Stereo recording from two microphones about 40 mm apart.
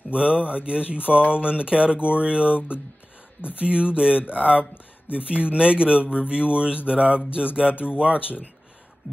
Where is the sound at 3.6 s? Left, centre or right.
Right.